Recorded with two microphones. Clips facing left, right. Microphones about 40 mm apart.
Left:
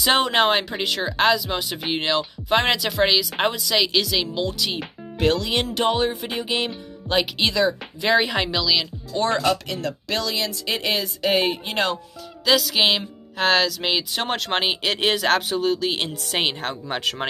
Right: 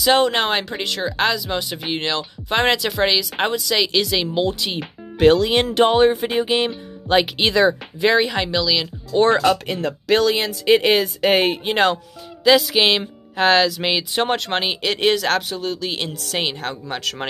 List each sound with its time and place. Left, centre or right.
0.0 s speech: centre
4.4 s speech: right
5.2 s speech: right
8.2 s speech: centre
9.4 s speech: right
12.4 s speech: centre